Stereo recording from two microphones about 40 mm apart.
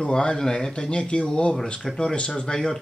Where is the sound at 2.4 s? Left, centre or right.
Centre.